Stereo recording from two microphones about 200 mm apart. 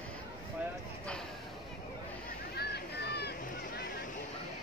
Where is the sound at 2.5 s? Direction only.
55° left (ahead or behind).